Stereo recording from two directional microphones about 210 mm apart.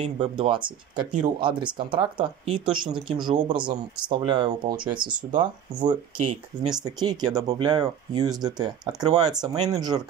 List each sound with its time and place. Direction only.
0.0 s speech: 25° right (ahead or behind)